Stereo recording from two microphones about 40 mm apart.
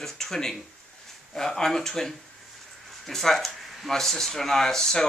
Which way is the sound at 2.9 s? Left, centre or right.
Centre.